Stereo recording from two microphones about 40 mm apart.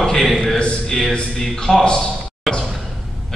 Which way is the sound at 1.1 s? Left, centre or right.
Centre.